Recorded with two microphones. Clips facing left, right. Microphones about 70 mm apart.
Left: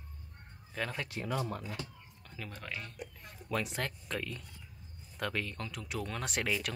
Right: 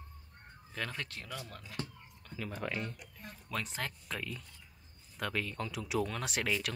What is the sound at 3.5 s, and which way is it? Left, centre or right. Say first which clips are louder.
Speech: left 4 dB; centre.